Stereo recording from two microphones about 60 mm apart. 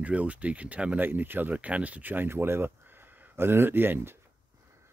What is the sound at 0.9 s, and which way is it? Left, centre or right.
Speech, right.